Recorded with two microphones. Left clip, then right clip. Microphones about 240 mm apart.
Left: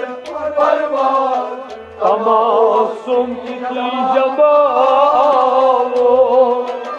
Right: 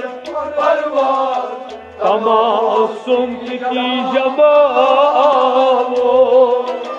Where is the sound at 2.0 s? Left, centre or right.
Right.